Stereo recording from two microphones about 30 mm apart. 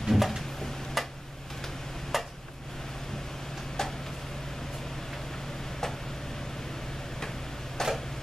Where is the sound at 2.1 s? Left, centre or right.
Centre.